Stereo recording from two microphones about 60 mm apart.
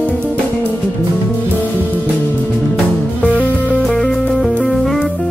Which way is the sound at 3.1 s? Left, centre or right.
Left.